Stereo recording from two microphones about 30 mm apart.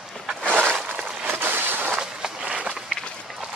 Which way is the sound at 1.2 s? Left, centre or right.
Right.